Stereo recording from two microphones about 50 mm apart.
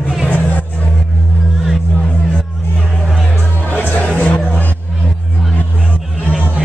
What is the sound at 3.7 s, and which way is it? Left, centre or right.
Music, left.